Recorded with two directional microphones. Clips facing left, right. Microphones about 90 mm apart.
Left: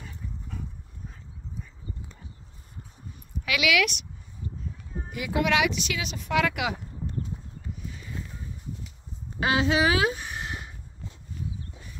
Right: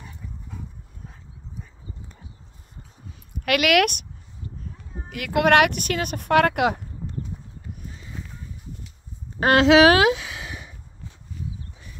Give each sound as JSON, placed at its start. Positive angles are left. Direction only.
{"t": 3.3, "sound": "a woman's voice", "side_deg": -55}
{"t": 5.1, "sound": "speech", "side_deg": -65}
{"t": 9.6, "sound": "speech", "side_deg": -85}